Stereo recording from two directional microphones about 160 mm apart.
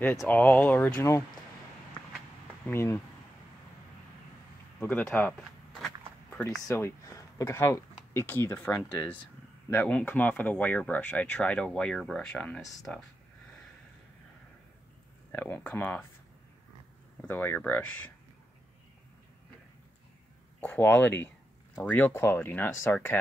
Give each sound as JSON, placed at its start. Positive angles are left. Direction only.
{"t": 0.0, "sound": "speech", "side_deg": 15}
{"t": 2.6, "sound": "speech", "side_deg": 15}
{"t": 4.7, "sound": "speech", "side_deg": 10}
{"t": 6.7, "sound": "speech", "side_deg": 20}
{"t": 15.3, "sound": "speech", "side_deg": 10}
{"t": 17.2, "sound": "speech", "side_deg": 10}
{"t": 20.6, "sound": "speech", "side_deg": 10}